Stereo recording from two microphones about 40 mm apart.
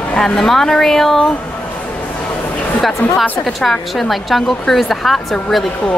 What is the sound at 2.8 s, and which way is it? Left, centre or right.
A woman's voice, centre.